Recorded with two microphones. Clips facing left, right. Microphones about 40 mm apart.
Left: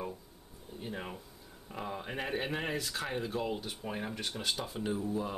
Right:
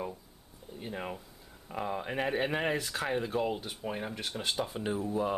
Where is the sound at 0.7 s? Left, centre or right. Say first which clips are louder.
Right 2 dB; centre.